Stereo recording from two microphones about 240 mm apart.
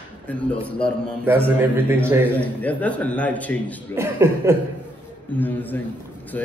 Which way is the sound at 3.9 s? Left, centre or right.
Centre.